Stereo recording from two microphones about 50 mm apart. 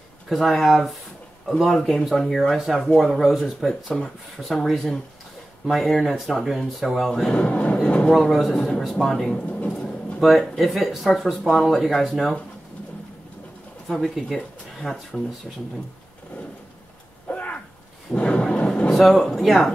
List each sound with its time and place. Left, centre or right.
0.3 s speech: centre
7.3 s music: left
8.1 s speech: centre
8.5 s speech: centre
9.4 s a sound: left
9.7 s a sound: centre
10.2 s speech: centre
13.8 s speech: centre
17.3 s a sound: left
18.1 s thunder: left
18.9 s a sound: centre
19.3 s speech: centre